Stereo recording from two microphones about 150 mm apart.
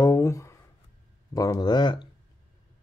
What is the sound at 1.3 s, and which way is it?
Speech, 25° left (ahead or behind).